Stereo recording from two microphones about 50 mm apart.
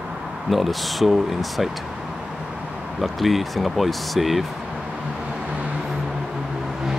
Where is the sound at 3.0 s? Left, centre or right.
Centre.